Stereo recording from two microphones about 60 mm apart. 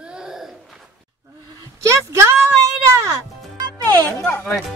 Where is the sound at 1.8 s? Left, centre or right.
Right.